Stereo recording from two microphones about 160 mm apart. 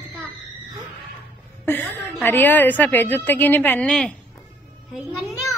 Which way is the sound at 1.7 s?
10° left (ahead or behind).